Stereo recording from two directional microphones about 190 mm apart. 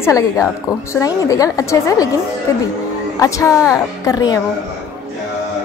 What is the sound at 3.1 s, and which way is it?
A woman's voice, 15° left (ahead or behind).